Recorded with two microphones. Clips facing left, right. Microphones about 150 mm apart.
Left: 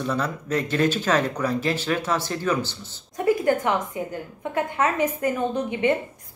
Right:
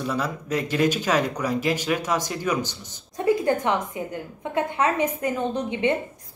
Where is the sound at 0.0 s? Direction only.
10° right (ahead or behind).